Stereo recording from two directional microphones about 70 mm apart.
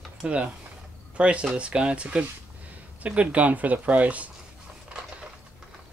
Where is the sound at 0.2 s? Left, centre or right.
Centre.